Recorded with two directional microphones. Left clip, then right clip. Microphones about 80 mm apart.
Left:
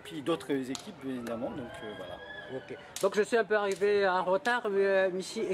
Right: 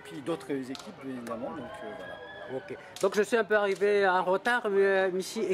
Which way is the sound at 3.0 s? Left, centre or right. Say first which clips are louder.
Right 1 dB; right.